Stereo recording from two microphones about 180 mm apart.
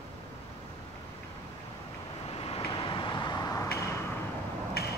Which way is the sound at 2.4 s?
30° left (ahead or behind).